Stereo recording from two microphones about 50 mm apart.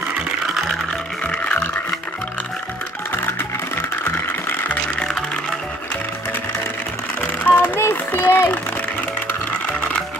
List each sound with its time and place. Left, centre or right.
1.2 s music: left
7.4 s a sound: left
7.7 s music: left